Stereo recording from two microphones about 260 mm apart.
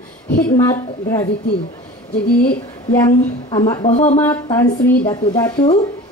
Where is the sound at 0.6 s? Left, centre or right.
Centre.